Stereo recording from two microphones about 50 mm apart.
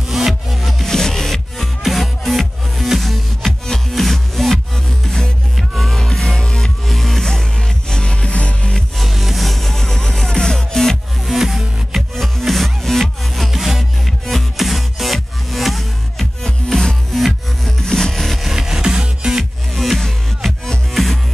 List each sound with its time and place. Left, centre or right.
0.1 s music: centre
5.6 s music: centre
5.9 s music: centre
6.9 s music: centre; by 8.7 s left
8.7 s music: centre
11.3 s music: centre
13.5 s music: centre
16.4 s music: centre
18.5 s music: centre
19.7 s music: centre